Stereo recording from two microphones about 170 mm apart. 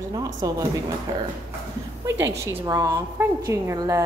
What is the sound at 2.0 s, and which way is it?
A woman's voice, 15° right (ahead or behind).